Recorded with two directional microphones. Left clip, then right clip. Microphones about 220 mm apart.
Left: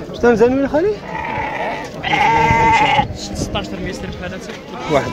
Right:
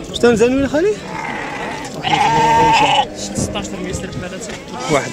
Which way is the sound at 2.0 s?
20° right (ahead or behind).